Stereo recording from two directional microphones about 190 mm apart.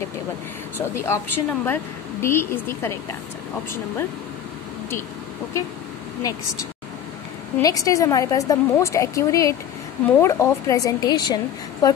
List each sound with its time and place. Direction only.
0.7 s a woman's voice: 15° left (ahead or behind)
6.2 s a woman's voice: 20° left (ahead or behind)
7.5 s a woman's voice: 20° left (ahead or behind)